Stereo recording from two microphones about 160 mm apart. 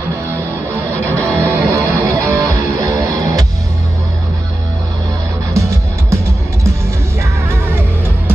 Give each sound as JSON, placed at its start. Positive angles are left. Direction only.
{"t": 0.7, "sound": "music", "side_deg": -15}
{"t": 5.5, "sound": "music", "side_deg": -20}